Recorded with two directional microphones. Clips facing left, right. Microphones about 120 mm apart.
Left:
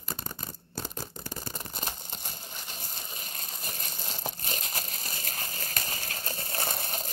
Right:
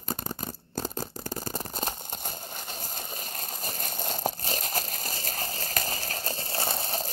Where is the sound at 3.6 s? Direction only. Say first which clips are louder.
Right 7 dB; 40° right (ahead or behind).